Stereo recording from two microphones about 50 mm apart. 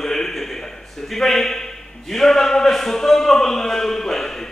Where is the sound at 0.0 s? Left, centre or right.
Centre.